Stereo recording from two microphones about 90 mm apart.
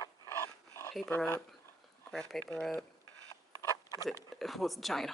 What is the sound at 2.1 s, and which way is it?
Speech, 10° left (ahead or behind).